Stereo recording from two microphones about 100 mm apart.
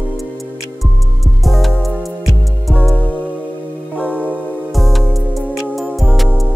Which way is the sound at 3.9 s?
15° right (ahead or behind).